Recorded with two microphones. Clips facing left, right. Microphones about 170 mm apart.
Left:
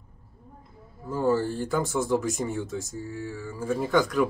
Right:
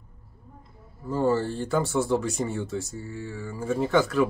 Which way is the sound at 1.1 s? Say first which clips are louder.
Right 1 dB; 15° right (ahead or behind).